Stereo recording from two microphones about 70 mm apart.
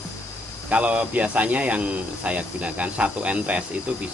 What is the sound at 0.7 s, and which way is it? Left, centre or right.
Speech, right.